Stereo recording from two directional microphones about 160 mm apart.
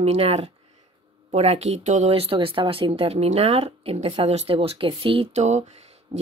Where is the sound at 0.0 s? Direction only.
40° right (ahead or behind).